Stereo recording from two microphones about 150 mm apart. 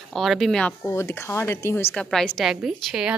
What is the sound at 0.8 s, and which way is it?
Speech, 15° left (ahead or behind).